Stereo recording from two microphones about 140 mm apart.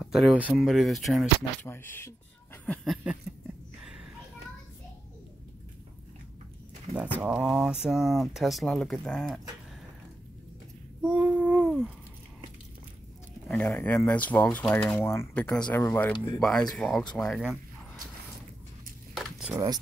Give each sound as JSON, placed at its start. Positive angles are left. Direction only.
{"t": 0.0, "sound": "speech", "side_deg": -5}
{"t": 1.6, "sound": "speech", "side_deg": 15}
{"t": 2.8, "sound": "speech", "side_deg": -5}
{"t": 7.2, "sound": "speech", "side_deg": -10}
{"t": 11.0, "sound": "a sound", "side_deg": -10}
{"t": 13.5, "sound": "speech", "side_deg": 10}
{"t": 16.3, "sound": "speech", "side_deg": 5}
{"t": 19.1, "sound": "a sound", "side_deg": 0}
{"t": 19.5, "sound": "speech", "side_deg": -25}